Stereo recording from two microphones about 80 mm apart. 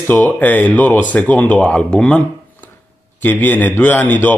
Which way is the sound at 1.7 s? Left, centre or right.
Centre.